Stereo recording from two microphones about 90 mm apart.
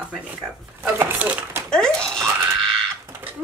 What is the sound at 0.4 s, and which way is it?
Speech, 20° right (ahead or behind).